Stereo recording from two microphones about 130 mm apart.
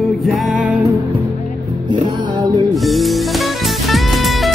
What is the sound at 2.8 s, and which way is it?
Music, centre (ahead or behind).